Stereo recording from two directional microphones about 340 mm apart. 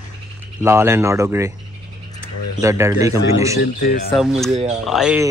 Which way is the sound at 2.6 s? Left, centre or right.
Centre.